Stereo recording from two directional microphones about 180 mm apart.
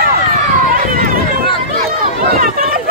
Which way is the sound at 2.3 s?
55° right (ahead or behind).